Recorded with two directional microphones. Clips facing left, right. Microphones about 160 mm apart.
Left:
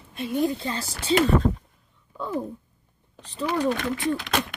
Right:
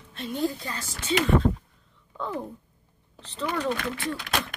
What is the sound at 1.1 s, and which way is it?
Speech, 45° left (ahead or behind).